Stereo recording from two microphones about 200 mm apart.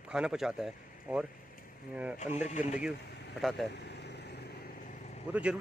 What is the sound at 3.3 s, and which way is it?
Speech, centre (ahead or behind).